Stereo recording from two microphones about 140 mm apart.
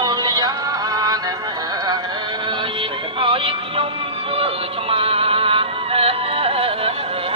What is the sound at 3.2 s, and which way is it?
Music, 40° right (ahead or behind).